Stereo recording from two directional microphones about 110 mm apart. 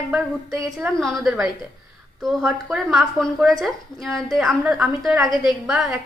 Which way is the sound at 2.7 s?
5° right (ahead or behind).